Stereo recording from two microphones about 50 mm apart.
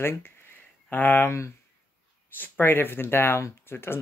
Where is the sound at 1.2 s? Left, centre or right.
Left.